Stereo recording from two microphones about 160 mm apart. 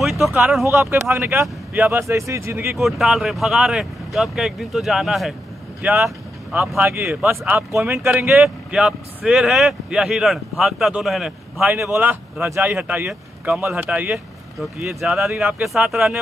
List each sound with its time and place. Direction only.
0.0 s speech: centre (ahead or behind)
2.8 s speech: centre (ahead or behind)
5.8 s vehicle: 10° right (ahead or behind)
6.8 s speech: 10° right (ahead or behind)
8.3 s speech: 5° right (ahead or behind)